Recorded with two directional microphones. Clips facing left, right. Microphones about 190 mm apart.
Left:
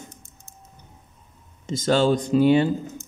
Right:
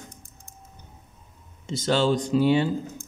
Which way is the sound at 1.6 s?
50° left (ahead or behind).